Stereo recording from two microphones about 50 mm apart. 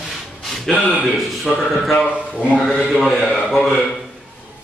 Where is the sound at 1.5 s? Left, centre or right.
Centre.